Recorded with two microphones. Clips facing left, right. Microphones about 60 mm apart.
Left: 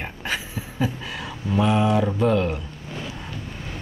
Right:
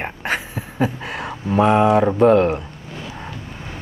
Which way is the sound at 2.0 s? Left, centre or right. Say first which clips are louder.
Right 7 dB; right.